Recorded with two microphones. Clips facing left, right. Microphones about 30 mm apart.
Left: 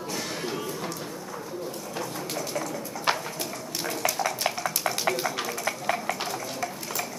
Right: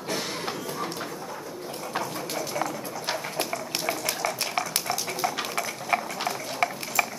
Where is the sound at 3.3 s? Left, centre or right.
Right.